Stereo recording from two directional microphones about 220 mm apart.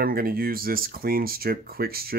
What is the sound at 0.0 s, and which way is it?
Speech, 40° right (ahead or behind).